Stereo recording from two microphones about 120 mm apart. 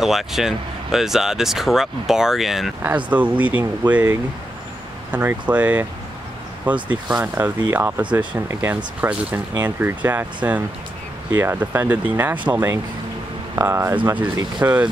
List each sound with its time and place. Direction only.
0.0 s speech: 5° right (ahead or behind)
2.8 s speech: 15° right (ahead or behind)
6.9 s speech: 10° right (ahead or behind)